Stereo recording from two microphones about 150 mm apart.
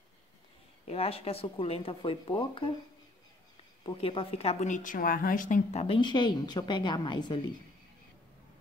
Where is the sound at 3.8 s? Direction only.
35° left (ahead or behind).